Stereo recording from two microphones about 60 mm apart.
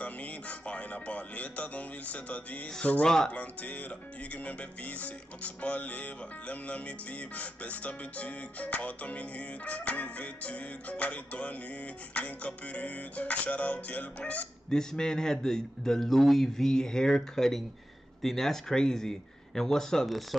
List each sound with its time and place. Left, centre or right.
0.0 s speech: left
2.8 s music: left
14.7 s a man's voice: centre